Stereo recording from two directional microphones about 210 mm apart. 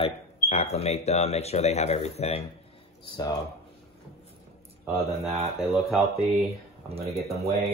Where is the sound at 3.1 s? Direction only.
15° left (ahead or behind).